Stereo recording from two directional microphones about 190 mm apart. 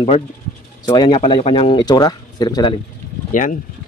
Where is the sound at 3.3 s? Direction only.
45° left (ahead or behind).